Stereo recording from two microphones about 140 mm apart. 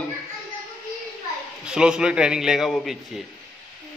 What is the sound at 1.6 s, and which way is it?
A man's voice, 5° right (ahead or behind).